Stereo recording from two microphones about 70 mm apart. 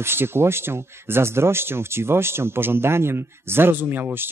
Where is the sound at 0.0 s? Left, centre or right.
Right.